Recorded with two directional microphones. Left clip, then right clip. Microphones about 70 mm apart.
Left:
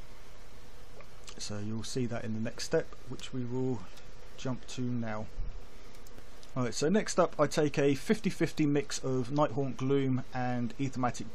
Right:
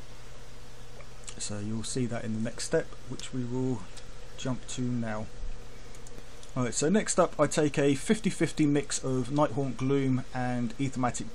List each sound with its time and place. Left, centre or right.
1.2 s speech: left
6.8 s speech: left